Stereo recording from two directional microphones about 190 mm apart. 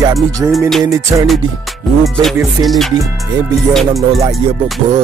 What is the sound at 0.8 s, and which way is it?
Music, 15° right (ahead or behind).